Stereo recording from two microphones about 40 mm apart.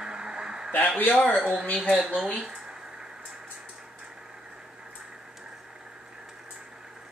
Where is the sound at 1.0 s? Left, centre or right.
Left.